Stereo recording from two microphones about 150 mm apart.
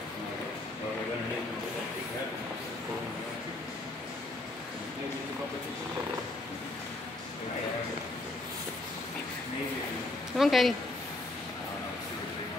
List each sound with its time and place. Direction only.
10.3 s speech: centre (ahead or behind)